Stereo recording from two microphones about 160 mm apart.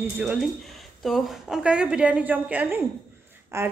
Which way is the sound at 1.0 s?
Centre (ahead or behind).